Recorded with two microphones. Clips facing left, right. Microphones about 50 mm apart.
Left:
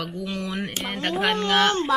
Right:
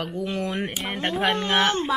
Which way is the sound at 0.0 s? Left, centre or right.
Right.